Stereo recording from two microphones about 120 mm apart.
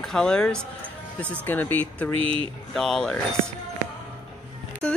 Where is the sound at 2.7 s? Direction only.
5° left (ahead or behind).